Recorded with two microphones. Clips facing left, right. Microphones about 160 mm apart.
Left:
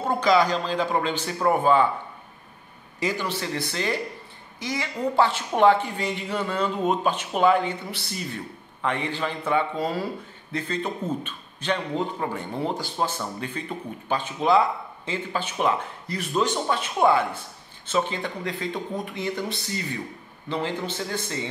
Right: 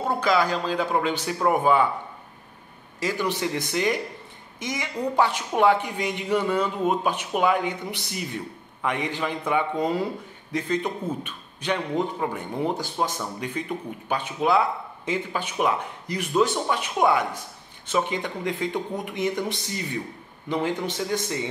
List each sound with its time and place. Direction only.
0.1 s a man's voice: 5° right (ahead or behind)
3.0 s a man's voice: 5° right (ahead or behind)
3.3 s a man's voice: 15° right (ahead or behind)